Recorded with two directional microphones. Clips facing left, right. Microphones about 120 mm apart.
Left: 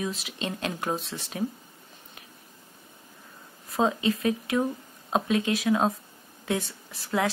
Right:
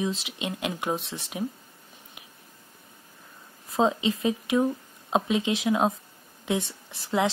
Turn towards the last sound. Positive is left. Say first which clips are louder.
# right 2 dB
turn(degrees=-20)  # may be behind; listen again after turning